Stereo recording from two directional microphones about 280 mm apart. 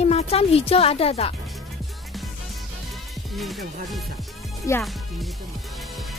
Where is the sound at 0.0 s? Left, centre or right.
Left.